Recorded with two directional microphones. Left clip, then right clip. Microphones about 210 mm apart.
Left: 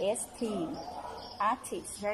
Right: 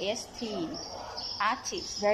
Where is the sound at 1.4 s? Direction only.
15° left (ahead or behind).